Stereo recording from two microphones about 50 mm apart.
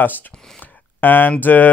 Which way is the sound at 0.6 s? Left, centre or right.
Left.